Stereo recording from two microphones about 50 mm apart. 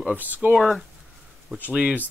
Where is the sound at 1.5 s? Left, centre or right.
Right.